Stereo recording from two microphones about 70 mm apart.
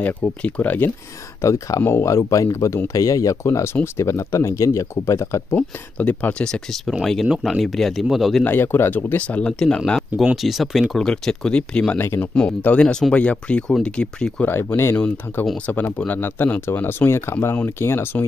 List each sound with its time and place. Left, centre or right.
0.0 s speech: centre
1.4 s speech: left
3.4 s speech: left
5.6 s speech: left
6.4 s speech: centre
6.9 s speech: centre
8.5 s speech: left
9.5 s speech: centre
10.3 s speech: centre
12.0 s speech: left
12.4 s speech: centre
14.5 s speech: left
15.5 s speech: left